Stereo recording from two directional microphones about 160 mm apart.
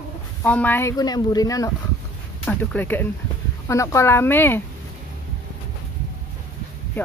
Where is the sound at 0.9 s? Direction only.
25° left (ahead or behind).